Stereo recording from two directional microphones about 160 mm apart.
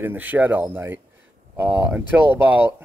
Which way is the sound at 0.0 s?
10° right (ahead or behind).